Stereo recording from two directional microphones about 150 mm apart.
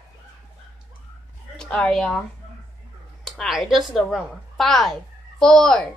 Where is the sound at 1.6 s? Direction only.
5° left (ahead or behind).